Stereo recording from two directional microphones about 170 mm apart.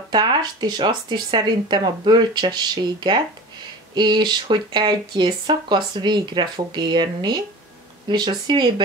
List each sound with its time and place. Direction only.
0.1 s speech: 25° right (ahead or behind)